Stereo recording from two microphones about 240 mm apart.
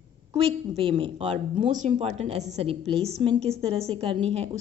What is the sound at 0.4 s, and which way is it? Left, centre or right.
A woman's voice, right.